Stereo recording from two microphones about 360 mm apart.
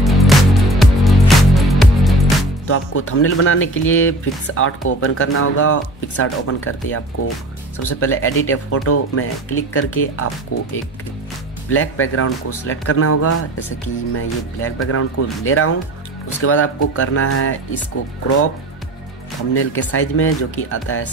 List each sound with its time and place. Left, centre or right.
0.0 s music: centre
2.6 s speech: left
11.7 s speech: left
14.9 s speech: left
19.5 s speech: left